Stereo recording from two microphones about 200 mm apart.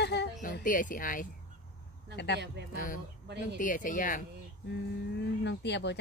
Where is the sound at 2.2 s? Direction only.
60° left (ahead or behind).